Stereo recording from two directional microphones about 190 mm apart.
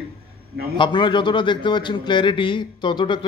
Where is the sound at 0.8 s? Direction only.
25° left (ahead or behind).